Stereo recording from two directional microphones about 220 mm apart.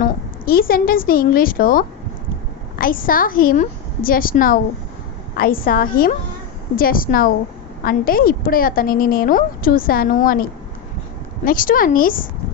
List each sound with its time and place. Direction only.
0.0 s a woman's voice: 40° left (ahead or behind)
11.4 s a woman's voice: 40° left (ahead or behind)